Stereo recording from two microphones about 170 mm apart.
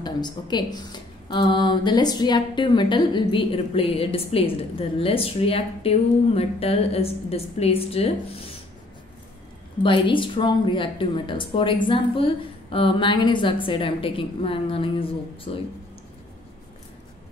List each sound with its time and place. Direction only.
0.0 s a woman's voice: 25° left (ahead or behind)
9.8 s speech: 30° left (ahead or behind)